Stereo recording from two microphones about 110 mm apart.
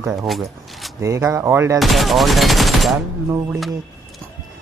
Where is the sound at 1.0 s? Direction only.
25° right (ahead or behind).